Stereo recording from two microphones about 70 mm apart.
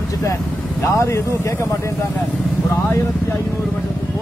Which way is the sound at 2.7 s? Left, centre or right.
Left.